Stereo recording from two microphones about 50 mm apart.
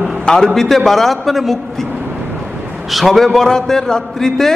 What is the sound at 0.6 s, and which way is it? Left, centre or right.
A man's voice, centre.